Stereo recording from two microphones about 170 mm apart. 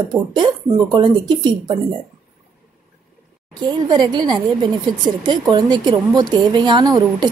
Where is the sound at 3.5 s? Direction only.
25° right (ahead or behind).